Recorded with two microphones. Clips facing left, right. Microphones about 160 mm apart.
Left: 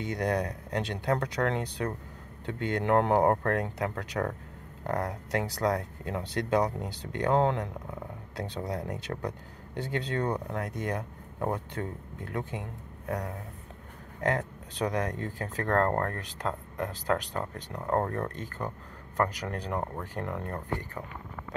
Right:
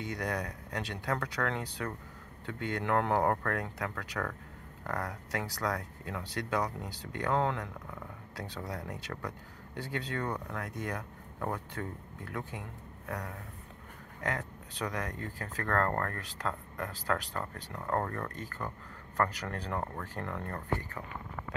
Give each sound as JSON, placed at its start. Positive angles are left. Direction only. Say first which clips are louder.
{"t": 0.0, "sound": "speech", "louder": "left 6 dB", "side_deg": 25}
{"t": 14.2, "sound": "speech", "louder": "left 7 dB", "side_deg": 25}